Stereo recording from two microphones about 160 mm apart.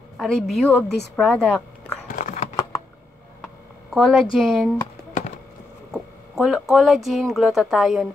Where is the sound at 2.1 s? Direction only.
50° left (ahead or behind).